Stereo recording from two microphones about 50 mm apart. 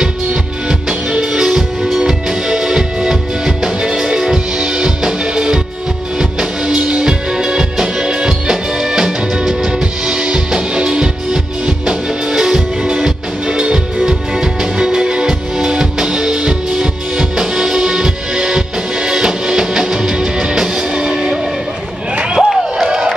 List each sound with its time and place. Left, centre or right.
0.0 s music: centre
1.8 s music: centre
2.0 s music: centre
22.4 s crowd: centre